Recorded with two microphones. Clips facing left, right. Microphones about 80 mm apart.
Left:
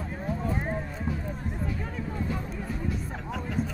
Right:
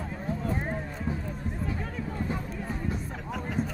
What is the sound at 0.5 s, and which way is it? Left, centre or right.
Clip-clop, centre.